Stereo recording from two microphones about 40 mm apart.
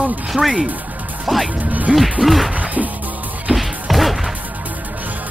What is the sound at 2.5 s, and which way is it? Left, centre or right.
Music, right.